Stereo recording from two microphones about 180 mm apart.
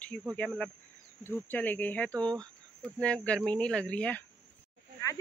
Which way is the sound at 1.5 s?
10° left (ahead or behind).